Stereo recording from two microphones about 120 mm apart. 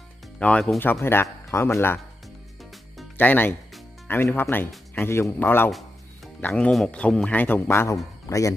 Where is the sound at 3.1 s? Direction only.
15° left (ahead or behind).